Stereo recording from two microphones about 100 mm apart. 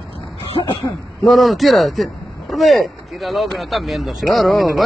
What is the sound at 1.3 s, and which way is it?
Speech, centre (ahead or behind).